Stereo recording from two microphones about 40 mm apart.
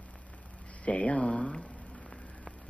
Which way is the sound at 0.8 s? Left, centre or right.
Left.